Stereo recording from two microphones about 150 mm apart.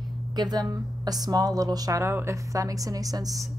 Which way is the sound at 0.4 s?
25° right (ahead or behind).